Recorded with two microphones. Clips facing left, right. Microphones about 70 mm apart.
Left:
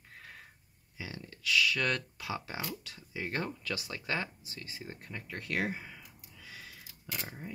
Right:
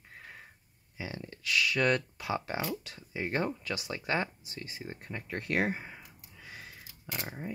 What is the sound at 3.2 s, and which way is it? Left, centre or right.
Speech, centre.